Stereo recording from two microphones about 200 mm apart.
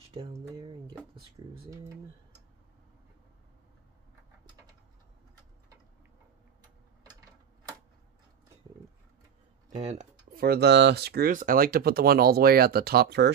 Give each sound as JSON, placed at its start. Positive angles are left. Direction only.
{"t": 0.2, "sound": "speech", "side_deg": -25}
{"t": 1.4, "sound": "speech", "side_deg": -25}
{"t": 9.8, "sound": "a sound", "side_deg": -35}
{"t": 10.4, "sound": "speech", "side_deg": -55}